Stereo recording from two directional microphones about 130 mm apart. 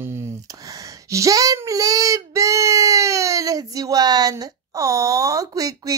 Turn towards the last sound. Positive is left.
turn(degrees=-30)  # may be behind; listen again after turning